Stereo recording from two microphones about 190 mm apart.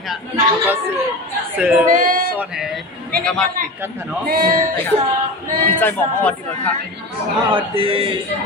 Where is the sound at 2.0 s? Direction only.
45° right (ahead or behind).